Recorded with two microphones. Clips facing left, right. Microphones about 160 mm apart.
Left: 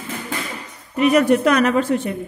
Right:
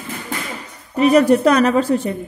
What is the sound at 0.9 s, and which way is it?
A woman's voice, 35° right (ahead or behind).